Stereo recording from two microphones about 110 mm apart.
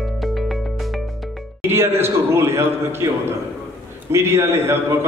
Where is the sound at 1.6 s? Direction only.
20° right (ahead or behind).